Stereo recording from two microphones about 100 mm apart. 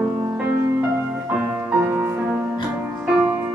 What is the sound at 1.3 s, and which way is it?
Music, 10° right (ahead or behind).